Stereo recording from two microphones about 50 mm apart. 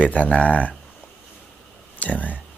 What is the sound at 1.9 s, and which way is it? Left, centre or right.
Speech, left.